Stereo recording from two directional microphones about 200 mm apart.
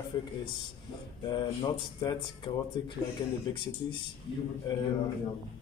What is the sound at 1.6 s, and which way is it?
Speech, 20° left (ahead or behind).